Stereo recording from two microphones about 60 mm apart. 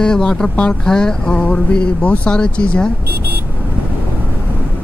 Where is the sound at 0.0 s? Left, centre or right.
Centre.